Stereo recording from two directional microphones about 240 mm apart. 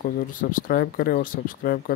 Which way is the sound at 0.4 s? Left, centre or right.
Left.